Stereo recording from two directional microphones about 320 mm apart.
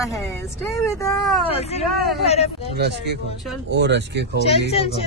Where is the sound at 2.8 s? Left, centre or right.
Right.